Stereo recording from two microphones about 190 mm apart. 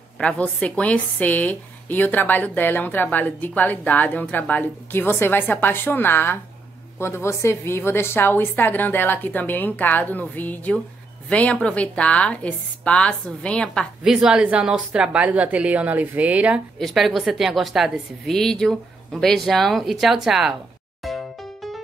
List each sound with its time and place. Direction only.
0.2 s a woman's voice: 5° left (ahead or behind)
21.0 s music: centre (ahead or behind)